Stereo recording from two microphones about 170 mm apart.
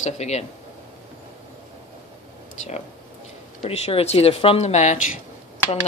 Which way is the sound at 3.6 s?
35° left (ahead or behind).